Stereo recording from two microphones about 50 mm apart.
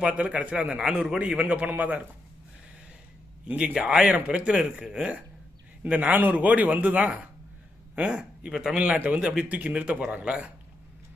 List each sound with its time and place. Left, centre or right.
0.0 s a man's voice: right
0.7 s speech: centre
1.4 s a man's voice: right
3.4 s a man's voice: right
3.8 s a man's voice: centre; by 7.1 s right
8.1 s speech: centre
8.7 s a man's voice: right